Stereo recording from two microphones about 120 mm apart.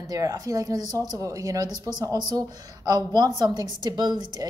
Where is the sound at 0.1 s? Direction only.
30° right (ahead or behind).